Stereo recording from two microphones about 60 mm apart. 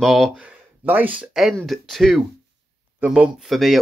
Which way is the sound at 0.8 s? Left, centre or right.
Right.